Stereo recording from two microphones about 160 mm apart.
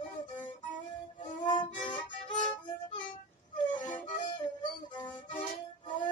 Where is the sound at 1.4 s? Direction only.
50° left (ahead or behind).